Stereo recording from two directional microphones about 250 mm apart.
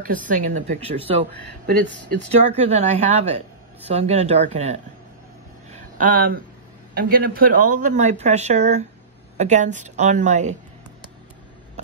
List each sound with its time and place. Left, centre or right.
0.0 s speech: right
1.7 s speech: right
2.6 s speech: right
5.7 s a sound: right
6.9 s speech: right